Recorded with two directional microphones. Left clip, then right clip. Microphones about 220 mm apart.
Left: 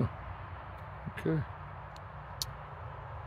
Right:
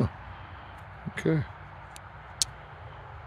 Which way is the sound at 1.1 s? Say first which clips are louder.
Right 6 dB; 45° right (ahead or behind).